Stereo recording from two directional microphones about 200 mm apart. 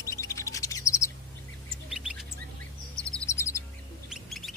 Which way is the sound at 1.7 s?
Centre (ahead or behind).